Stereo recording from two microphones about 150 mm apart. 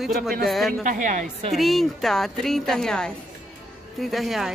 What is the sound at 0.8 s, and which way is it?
Speech, 55° right (ahead or behind).